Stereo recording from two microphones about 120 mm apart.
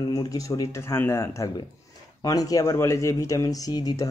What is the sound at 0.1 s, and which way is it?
Speech, 30° left (ahead or behind).